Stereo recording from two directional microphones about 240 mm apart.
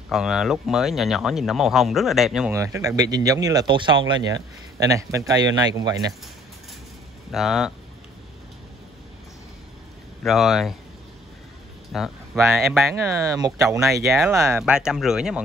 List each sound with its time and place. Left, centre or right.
0.1 s speech: centre
2.5 s speech: centre
7.2 s speech: centre
10.2 s speech: centre
11.9 s speech: centre
12.9 s speech: centre